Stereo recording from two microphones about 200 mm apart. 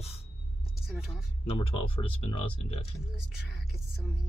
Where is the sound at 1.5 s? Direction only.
25° left (ahead or behind).